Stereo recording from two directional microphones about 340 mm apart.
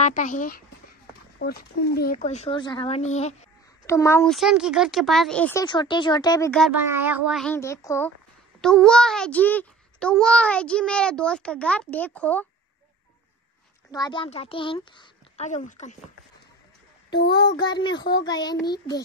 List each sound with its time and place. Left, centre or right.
0.0 s speech: left
3.8 s speech: centre
13.9 s speech: centre
17.6 s speech: centre
17.9 s speech: left
18.2 s speech: centre